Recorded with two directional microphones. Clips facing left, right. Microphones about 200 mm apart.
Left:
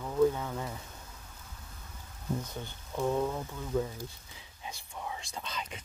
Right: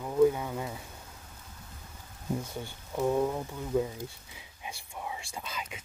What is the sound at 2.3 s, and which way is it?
Speech, 10° right (ahead or behind).